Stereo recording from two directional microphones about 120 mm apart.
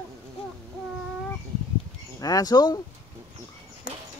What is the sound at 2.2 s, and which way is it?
Speech, 30° left (ahead or behind).